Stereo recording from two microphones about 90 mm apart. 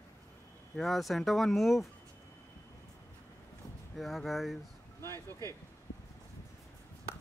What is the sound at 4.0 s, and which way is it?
Speech, centre (ahead or behind).